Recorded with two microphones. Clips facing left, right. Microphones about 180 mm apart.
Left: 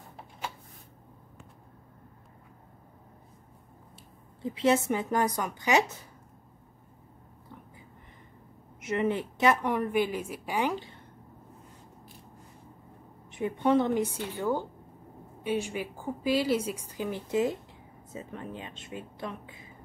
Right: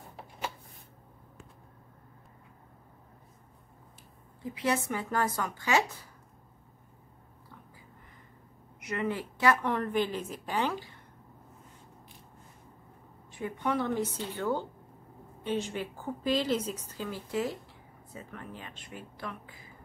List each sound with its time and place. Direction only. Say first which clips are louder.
4.4 s a woman's voice: left 5 dB; 25° left (ahead or behind)
8.7 s a woman's voice: left 5 dB; 25° left (ahead or behind)
13.3 s a woman's voice: left 7 dB; 25° left (ahead or behind)